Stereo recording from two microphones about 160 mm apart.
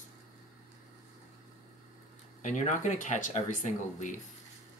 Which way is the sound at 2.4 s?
50° left (ahead or behind).